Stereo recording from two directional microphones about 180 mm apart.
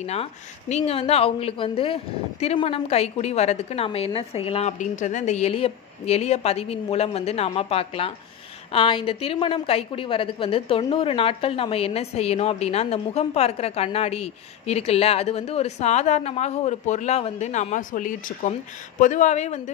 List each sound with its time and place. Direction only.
0.0 s a woman's voice: 35° left (ahead or behind)